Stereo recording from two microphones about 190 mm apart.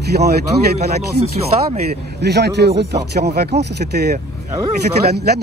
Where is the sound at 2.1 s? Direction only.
60° right (ahead or behind).